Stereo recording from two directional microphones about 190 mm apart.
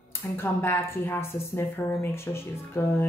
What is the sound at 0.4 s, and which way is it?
Speech, 10° left (ahead or behind).